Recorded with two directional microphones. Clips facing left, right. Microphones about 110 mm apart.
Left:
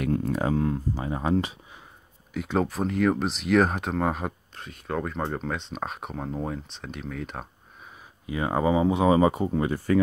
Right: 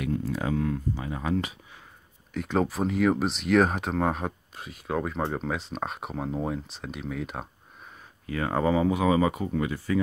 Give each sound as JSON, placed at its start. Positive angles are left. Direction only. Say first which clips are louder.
{"t": 0.0, "sound": "speech", "louder": "left 3 dB", "side_deg": 55}
{"t": 0.4, "sound": "speech", "louder": "left 3 dB", "side_deg": 35}
{"t": 2.3, "sound": "speech", "louder": "even", "side_deg": 0}
{"t": 8.3, "sound": "speech", "louder": "left 1 dB", "side_deg": 15}